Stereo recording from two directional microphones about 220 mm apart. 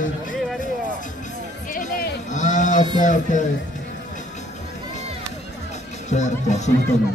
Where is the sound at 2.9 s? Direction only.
35° left (ahead or behind).